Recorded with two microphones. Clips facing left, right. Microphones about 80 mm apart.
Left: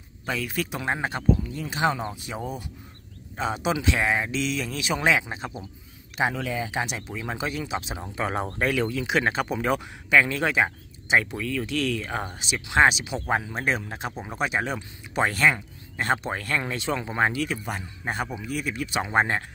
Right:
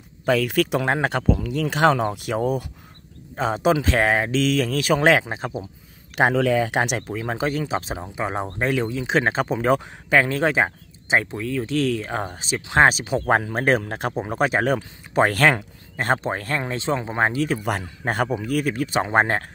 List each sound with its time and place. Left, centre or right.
0.2 s speech: right
3.3 s speech: right
6.1 s speech: right
8.0 s speech: centre; by 15.6 s right
16.0 s speech: right
18.0 s speech: right